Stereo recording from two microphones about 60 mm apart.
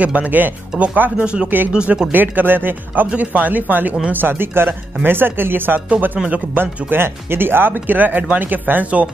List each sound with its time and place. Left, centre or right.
0.0 s speech: right
1.2 s speech: centre
2.1 s speech: right